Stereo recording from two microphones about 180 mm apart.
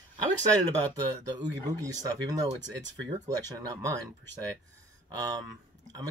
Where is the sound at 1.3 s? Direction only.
20° right (ahead or behind).